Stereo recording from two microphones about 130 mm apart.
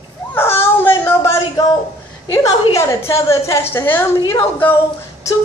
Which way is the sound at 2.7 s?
20° left (ahead or behind).